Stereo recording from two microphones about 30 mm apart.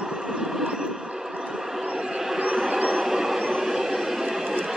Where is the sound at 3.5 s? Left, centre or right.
Centre.